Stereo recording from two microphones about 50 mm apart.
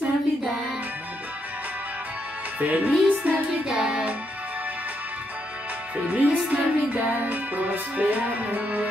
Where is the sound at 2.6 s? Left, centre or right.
Right.